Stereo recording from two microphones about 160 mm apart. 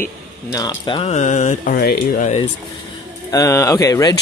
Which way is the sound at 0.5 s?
25° left (ahead or behind).